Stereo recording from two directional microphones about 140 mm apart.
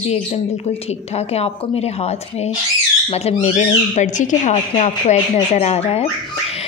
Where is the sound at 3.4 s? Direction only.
60° left (ahead or behind).